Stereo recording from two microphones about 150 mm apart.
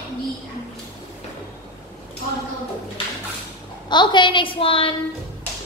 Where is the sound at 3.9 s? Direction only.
30° left (ahead or behind).